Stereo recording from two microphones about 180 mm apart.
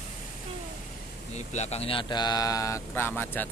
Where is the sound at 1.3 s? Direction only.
40° left (ahead or behind).